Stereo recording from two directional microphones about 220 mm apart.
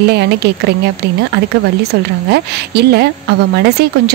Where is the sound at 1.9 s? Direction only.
50° right (ahead or behind).